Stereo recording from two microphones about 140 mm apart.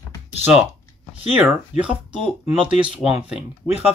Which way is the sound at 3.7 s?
45° left (ahead or behind).